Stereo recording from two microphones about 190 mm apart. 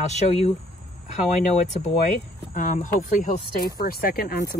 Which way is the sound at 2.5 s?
45° left (ahead or behind).